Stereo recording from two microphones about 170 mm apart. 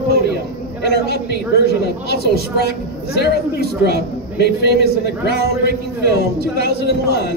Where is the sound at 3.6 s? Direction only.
70° right (ahead or behind).